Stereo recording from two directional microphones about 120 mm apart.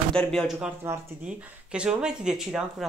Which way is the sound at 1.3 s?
10° right (ahead or behind).